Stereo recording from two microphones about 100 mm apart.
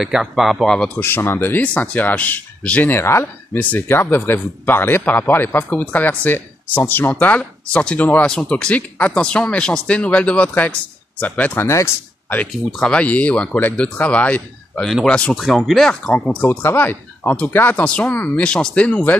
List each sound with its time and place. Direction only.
0.0 s speech: 5° right (ahead or behind)
0.9 s speech: 20° left (ahead or behind)
2.9 s speech: 25° left (ahead or behind)
11.6 s speech: 30° left (ahead or behind)
12.7 s speech: 10° left (ahead or behind)
15.3 s speech: centre (ahead or behind)